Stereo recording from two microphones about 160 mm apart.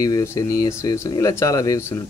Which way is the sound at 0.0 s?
20° left (ahead or behind).